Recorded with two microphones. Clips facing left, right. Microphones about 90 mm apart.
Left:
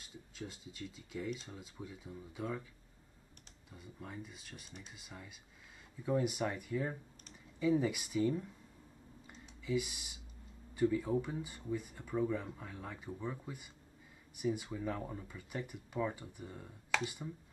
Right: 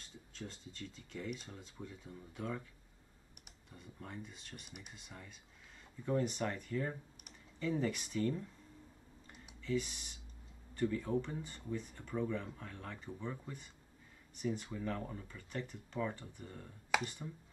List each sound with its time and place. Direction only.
0.0 s speech: 5° left (ahead or behind)
3.7 s speech: 5° left (ahead or behind)
4.6 s speech: 10° right (ahead or behind)
4.9 s speech: 5° left (ahead or behind)
9.6 s speech: 10° left (ahead or behind)